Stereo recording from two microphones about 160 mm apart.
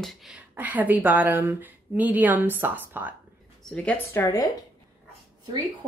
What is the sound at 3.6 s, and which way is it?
Speech, 5° left (ahead or behind).